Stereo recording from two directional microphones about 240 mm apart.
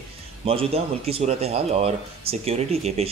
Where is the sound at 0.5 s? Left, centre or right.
Right.